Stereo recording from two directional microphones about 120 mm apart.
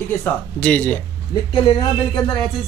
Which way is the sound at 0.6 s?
10° left (ahead or behind).